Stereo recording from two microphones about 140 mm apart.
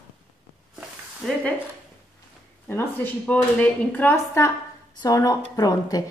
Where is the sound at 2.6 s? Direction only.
15° left (ahead or behind).